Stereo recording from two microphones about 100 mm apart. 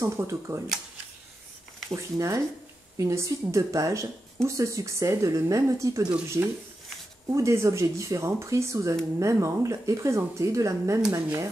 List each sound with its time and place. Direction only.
0.0 s speech: 30° right (ahead or behind)
2.0 s speech: 30° right (ahead or behind)